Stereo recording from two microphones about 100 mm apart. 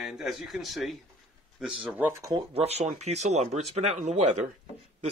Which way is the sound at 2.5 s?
90° right.